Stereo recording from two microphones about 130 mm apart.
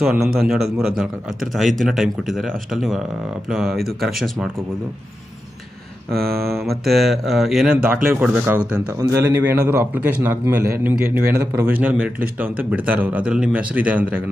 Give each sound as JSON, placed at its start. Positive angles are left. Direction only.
{"t": 0.0, "sound": "a man's voice", "side_deg": -5}
{"t": 6.1, "sound": "a man's voice", "side_deg": 0}
{"t": 8.9, "sound": "a man's voice", "side_deg": -25}